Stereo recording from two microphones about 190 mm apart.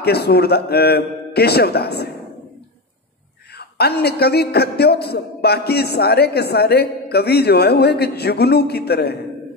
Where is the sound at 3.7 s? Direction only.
55° left (ahead or behind).